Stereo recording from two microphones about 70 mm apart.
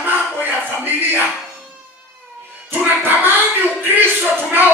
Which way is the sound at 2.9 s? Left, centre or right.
Right.